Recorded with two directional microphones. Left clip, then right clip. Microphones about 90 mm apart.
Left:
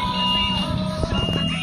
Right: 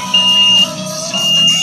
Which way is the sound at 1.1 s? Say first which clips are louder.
Right 17 dB; 5° right (ahead or behind).